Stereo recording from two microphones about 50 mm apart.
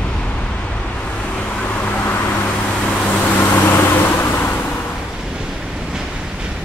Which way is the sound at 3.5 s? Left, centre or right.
Left.